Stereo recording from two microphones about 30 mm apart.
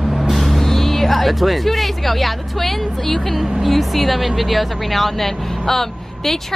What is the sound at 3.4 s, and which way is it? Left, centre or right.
Speech, centre.